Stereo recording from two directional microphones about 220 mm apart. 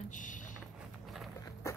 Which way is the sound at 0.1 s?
35° left (ahead or behind).